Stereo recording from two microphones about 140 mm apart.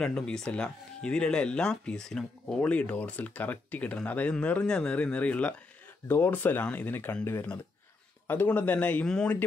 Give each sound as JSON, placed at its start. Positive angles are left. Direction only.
{"t": 0.0, "sound": "speech", "side_deg": 5}